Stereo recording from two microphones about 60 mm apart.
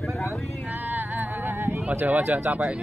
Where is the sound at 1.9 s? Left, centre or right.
Right.